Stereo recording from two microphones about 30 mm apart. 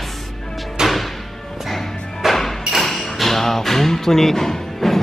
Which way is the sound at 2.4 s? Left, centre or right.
Centre.